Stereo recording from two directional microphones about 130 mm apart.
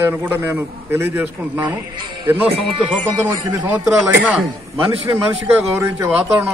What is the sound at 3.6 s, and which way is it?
Speech, 15° right (ahead or behind).